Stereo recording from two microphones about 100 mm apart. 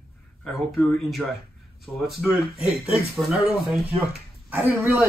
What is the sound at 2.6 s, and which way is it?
Speech, 5° right (ahead or behind).